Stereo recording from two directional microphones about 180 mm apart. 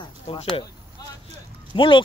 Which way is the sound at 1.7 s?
25° left (ahead or behind).